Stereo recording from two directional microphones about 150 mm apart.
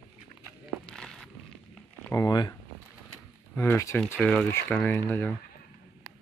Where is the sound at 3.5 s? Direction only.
15° left (ahead or behind).